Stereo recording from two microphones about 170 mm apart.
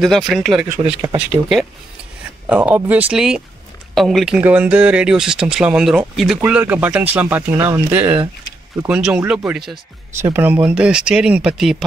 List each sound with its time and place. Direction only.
0.0 s speech: centre (ahead or behind)
0.7 s speech: 35° right (ahead or behind)
2.4 s speech: 10° right (ahead or behind)